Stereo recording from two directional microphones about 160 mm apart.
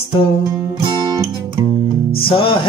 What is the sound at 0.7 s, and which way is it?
Music, 30° right (ahead or behind).